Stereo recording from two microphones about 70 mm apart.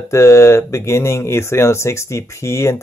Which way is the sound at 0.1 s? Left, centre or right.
Left.